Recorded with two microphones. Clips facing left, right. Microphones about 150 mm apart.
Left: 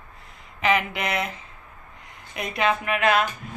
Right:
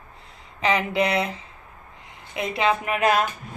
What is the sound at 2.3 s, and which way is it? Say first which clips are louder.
Speech: right 1 dB; 25° right (ahead or behind).